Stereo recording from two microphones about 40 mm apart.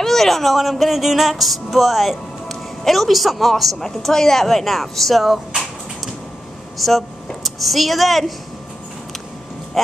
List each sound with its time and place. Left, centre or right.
0.0 s music: centre
6.8 s music: centre